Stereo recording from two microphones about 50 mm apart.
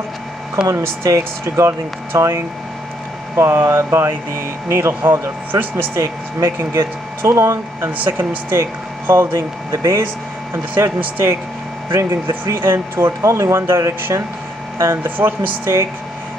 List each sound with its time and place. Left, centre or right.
0.7 s speech: right
5.5 s speech: right
5.9 s speech: right
8.2 s speech: right
10.5 s speech: right
13.3 s speech: right
15.0 s speech: right
15.6 s speech: right